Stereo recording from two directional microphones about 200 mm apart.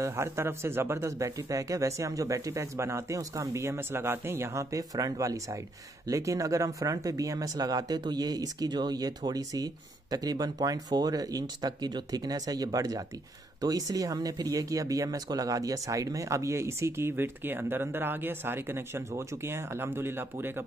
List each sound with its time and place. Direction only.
0.0 s speech: 15° right (ahead or behind)